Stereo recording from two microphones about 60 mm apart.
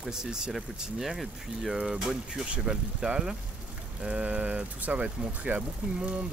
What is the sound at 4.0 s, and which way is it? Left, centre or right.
Speech, right.